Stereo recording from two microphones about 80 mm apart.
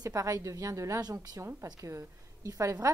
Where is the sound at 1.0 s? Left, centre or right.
Right.